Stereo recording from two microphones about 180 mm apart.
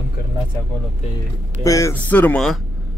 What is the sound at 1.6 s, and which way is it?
Speech, 15° left (ahead or behind).